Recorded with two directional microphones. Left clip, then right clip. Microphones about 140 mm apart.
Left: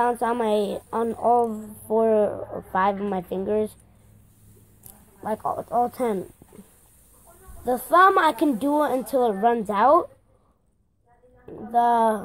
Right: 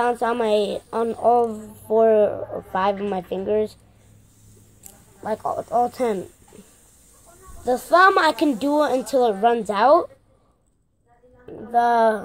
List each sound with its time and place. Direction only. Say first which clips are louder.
0.0 s a woman's voice: right 2 dB; 15° left (ahead or behind)
5.2 s a woman's voice: right 2 dB; 10° left (ahead or behind)
7.6 s a woman's voice: right 2 dB; 15° left (ahead or behind)
11.4 s a woman's voice: right 1 dB; 15° left (ahead or behind)